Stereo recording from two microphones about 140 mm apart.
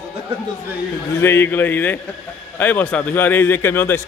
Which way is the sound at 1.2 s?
15° left (ahead or behind).